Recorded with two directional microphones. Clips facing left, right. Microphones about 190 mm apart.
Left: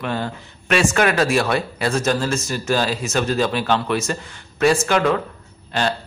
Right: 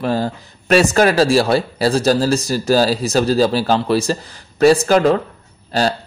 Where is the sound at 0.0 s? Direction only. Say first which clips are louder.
Right 6 dB; 35° right (ahead or behind).